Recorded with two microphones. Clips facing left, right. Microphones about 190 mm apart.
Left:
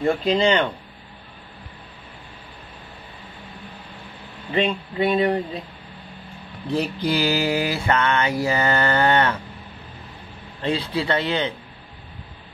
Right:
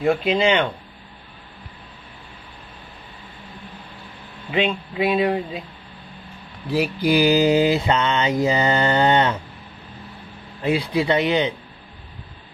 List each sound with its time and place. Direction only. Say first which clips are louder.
0.0 s mantra: right 1 dB; 5° right (ahead or behind)
4.5 s speech: even; 5° right (ahead or behind)
6.7 s mantra: right 3 dB; 10° right (ahead or behind)
10.6 s mantra: right 3 dB; 10° right (ahead or behind)